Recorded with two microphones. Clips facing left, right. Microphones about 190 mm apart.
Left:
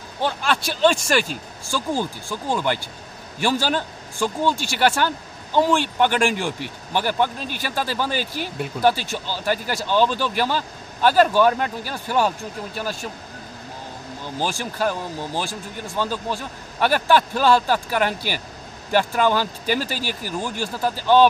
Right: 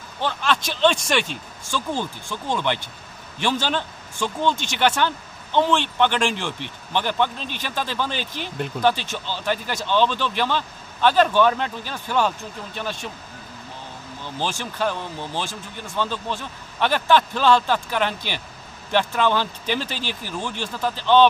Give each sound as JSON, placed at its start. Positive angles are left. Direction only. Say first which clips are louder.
{"t": 0.2, "sound": "speech", "louder": "left 1 dB", "side_deg": 10}
{"t": 14.2, "sound": "speech", "louder": "left 2 dB", "side_deg": 10}